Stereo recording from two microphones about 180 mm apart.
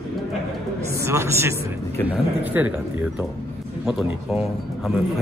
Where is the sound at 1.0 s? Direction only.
15° right (ahead or behind).